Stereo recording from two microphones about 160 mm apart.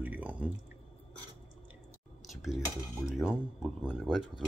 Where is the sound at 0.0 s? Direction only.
10° right (ahead or behind).